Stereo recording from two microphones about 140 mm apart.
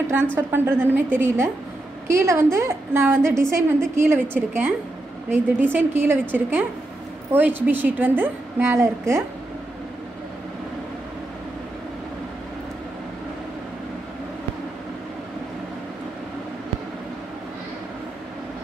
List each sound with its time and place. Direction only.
0.4 s a woman's voice: 15° right (ahead or behind)